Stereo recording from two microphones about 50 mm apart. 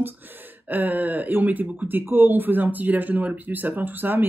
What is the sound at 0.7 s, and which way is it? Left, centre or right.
Speech, right.